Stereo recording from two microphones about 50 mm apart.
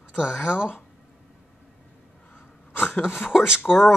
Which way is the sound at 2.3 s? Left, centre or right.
Left.